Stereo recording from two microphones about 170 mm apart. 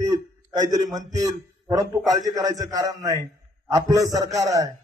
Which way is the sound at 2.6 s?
20° right (ahead or behind).